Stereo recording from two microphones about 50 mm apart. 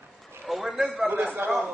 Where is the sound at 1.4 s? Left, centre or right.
Right.